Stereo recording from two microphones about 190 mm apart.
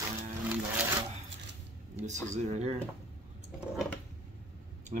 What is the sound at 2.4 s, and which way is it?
Speech, 35° right (ahead or behind).